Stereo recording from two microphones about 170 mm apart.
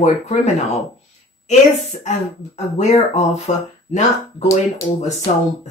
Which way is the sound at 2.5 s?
40° left (ahead or behind).